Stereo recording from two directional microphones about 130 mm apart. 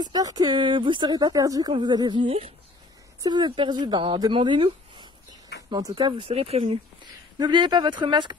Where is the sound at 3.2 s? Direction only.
35° right (ahead or behind); by 6.8 s 50° right (ahead or behind).